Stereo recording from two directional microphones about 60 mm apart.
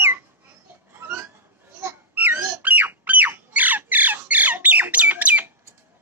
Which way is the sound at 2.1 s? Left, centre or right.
Right.